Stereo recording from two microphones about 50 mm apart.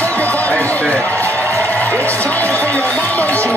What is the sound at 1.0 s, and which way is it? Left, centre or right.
Music, left.